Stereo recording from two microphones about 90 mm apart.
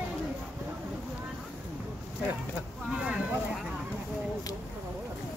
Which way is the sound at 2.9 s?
5° right (ahead or behind).